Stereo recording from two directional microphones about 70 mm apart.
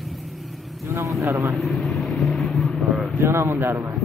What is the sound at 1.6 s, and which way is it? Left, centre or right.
Vehicle, centre.